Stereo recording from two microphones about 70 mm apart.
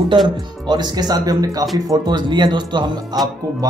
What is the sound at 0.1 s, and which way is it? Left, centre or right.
Speech, right.